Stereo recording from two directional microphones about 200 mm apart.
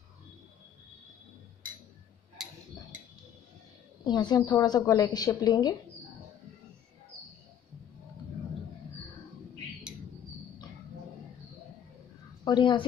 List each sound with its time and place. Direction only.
4.0 s a woman's voice: 20° left (ahead or behind)
12.4 s a woman's voice: 25° left (ahead or behind)